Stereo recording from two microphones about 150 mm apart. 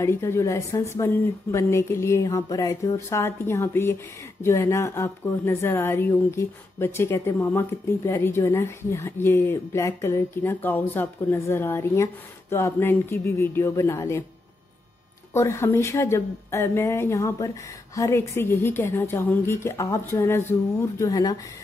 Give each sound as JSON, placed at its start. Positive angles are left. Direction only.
{"t": 0.0, "sound": "speech", "side_deg": 15}
{"t": 15.3, "sound": "speech", "side_deg": 20}